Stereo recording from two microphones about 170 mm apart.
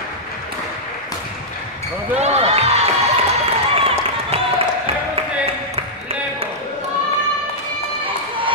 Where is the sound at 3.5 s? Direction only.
35° right (ahead or behind).